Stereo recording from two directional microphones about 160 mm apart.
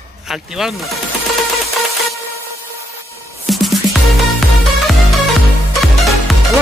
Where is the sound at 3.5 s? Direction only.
Centre (ahead or behind).